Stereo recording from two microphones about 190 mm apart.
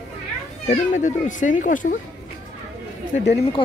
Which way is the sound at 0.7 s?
40° left (ahead or behind).